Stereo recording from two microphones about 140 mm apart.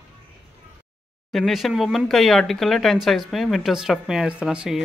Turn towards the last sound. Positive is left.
turn(degrees=-5)  # may be behind; listen again after turning